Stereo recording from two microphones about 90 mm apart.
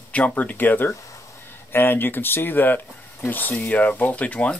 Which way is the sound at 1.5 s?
25° left (ahead or behind).